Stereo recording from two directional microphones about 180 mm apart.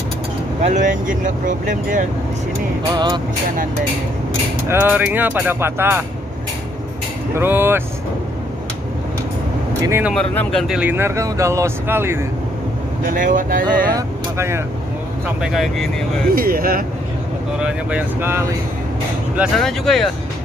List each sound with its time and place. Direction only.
0.6 s speech: 40° right (ahead or behind)
2.9 s music: 25° right (ahead or behind)
4.6 s speech: 10° right (ahead or behind)
7.3 s speech: 10° right (ahead or behind)
9.8 s speech: 10° right (ahead or behind)
10.1 s speech: 5° left (ahead or behind)
10.8 s speech: 10° right (ahead or behind)
13.0 s speech: 45° right (ahead or behind)
13.9 s speech: 15° right (ahead or behind)
15.2 s speech: centre (ahead or behind)
16.3 s speech: 55° right (ahead or behind)
17.6 s speech: 5° right (ahead or behind)
19.3 s speech: 5° right (ahead or behind)